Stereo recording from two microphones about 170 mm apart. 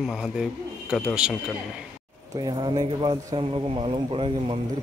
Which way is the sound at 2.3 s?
25° right (ahead or behind).